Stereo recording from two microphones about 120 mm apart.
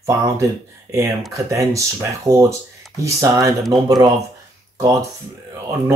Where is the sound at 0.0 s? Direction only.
25° right (ahead or behind).